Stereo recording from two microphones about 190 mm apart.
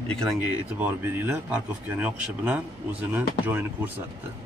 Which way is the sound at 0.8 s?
10° right (ahead or behind).